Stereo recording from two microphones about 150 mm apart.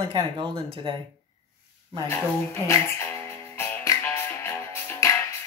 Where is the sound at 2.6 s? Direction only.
20° left (ahead or behind).